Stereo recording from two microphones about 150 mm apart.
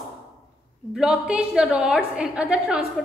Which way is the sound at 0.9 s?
5° right (ahead or behind).